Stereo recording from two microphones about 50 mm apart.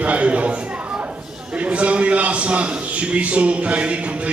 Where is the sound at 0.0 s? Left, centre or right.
Right.